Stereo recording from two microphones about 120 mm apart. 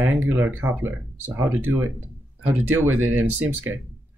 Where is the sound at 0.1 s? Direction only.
15° right (ahead or behind).